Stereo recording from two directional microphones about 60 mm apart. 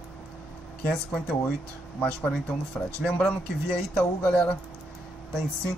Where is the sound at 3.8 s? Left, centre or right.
Centre.